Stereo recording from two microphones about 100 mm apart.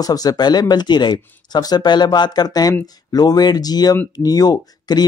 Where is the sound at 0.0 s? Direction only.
40° left (ahead or behind).